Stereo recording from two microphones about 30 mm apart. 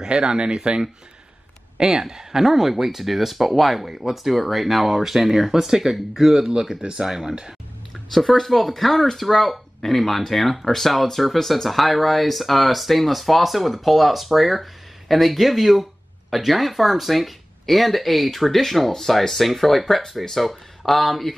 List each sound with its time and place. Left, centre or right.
0.1 s speech: right
1.8 s speech: centre
3.8 s speech: centre
7.9 s speech: centre
19.2 s speech: centre